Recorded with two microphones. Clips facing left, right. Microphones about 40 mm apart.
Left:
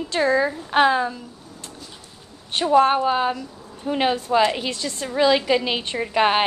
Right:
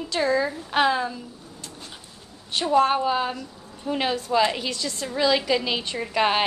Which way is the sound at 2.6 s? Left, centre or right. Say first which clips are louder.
Left 3 dB; centre.